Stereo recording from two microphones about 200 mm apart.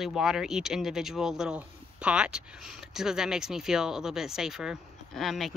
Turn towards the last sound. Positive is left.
turn(degrees=0)  # may be behind; listen again after turning